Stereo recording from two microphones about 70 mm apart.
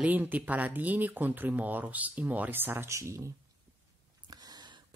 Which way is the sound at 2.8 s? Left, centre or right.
Right.